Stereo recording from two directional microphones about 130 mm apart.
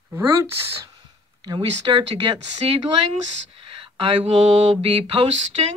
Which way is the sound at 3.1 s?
45° right (ahead or behind).